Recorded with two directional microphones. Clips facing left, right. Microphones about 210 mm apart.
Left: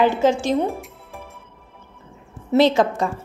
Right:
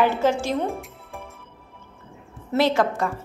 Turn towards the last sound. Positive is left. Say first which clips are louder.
# left 4 dB
turn(degrees=20)  # may be behind; listen again after turning